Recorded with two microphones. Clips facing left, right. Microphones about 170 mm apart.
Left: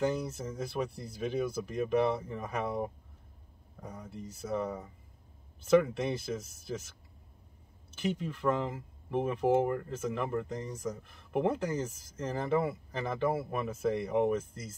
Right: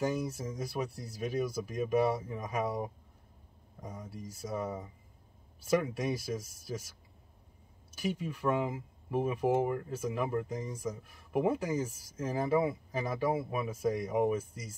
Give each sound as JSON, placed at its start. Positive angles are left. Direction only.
{"t": 0.0, "sound": "speech", "side_deg": -10}
{"t": 7.9, "sound": "speech", "side_deg": -10}